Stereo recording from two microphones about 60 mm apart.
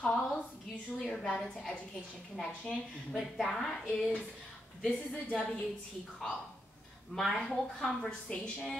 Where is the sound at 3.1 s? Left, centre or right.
Centre.